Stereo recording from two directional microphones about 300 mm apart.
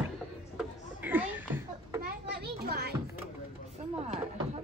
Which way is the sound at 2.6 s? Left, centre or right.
Right.